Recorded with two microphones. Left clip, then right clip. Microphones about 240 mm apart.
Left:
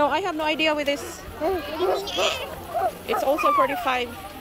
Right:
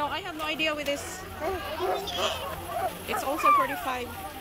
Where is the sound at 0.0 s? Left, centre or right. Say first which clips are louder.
Left 9 dB; centre.